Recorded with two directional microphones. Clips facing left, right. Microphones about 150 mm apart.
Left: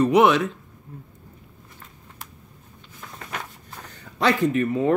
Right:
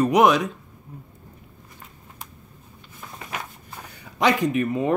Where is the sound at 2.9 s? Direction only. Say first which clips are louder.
Right 1 dB; 10° right (ahead or behind).